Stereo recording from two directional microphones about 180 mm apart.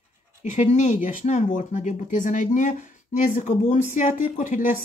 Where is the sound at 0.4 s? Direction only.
40° left (ahead or behind).